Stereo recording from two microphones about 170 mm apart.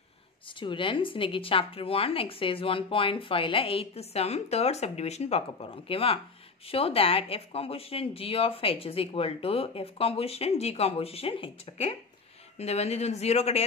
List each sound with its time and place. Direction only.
0.5 s a woman's voice: 30° left (ahead or behind)